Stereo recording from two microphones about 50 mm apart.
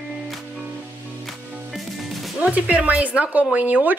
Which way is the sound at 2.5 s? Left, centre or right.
Right.